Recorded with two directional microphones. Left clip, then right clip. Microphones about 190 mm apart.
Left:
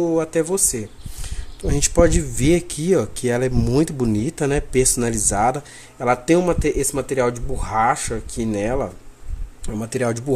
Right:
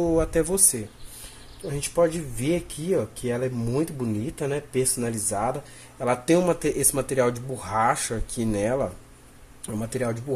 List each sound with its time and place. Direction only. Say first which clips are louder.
0.0 s speech: left 3 dB; 5° left (ahead or behind)
1.7 s speech: left 6 dB; 40° left (ahead or behind)
5.9 s speech: left 4 dB; 15° left (ahead or behind)